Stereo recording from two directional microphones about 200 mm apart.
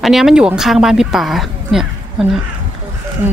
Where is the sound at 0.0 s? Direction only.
Centre (ahead or behind).